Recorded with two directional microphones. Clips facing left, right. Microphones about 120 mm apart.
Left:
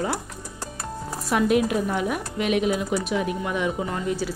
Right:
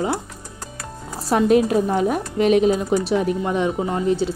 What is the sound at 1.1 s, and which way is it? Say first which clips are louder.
A woman's voice: right 5 dB; 30° right (ahead or behind).